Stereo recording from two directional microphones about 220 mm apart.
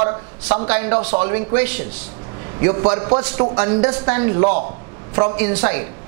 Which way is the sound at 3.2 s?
10° right (ahead or behind).